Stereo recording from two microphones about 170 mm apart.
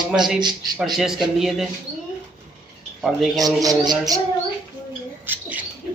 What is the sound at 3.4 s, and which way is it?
Speech, 20° right (ahead or behind).